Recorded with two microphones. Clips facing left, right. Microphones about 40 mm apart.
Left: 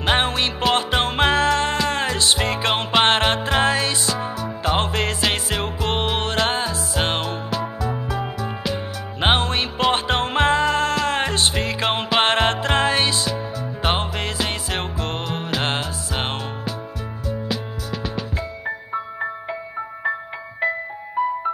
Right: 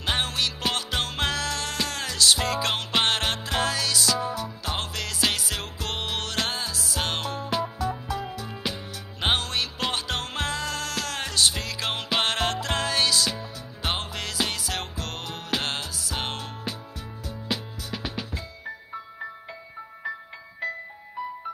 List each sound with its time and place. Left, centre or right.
0.0 s music: left
17.5 s music: centre
18.9 s music: left
20.6 s music: left